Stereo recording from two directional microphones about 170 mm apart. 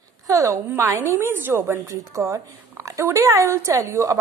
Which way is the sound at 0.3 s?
20° right (ahead or behind).